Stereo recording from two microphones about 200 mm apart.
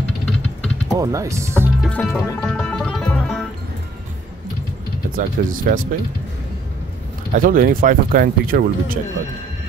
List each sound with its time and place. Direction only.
0.2 s vehicle: 5° left (ahead or behind)
0.9 s speech: 15° right (ahead or behind)
1.8 s music: 5° left (ahead or behind)
5.1 s speech: 45° right (ahead or behind)
7.3 s speech: 45° right (ahead or behind)